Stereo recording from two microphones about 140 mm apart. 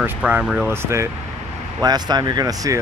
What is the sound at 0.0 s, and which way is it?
Speech, 10° right (ahead or behind).